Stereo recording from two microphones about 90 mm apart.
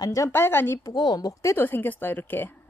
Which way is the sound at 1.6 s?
20° left (ahead or behind).